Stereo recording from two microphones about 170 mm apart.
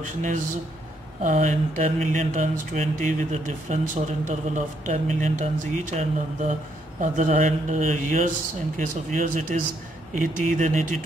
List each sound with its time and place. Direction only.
0.0 s speech: 50° right (ahead or behind)